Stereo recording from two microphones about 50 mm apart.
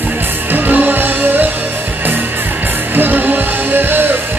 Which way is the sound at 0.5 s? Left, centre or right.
Right.